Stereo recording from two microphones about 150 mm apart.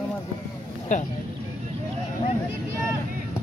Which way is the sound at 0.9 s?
55° left (ahead or behind).